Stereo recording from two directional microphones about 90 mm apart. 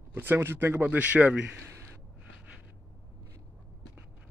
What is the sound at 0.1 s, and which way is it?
Speech, 20° right (ahead or behind).